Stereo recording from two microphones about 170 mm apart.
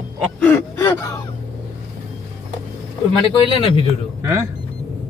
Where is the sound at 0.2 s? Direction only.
5° left (ahead or behind).